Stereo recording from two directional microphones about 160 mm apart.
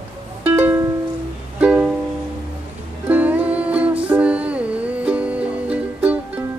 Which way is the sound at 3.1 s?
10° right (ahead or behind).